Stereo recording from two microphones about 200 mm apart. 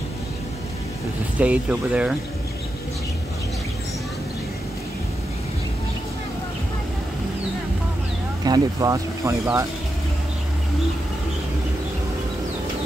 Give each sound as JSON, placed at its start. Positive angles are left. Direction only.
{"t": 1.4, "sound": "speech", "side_deg": -5}
{"t": 8.5, "sound": "speech", "side_deg": -15}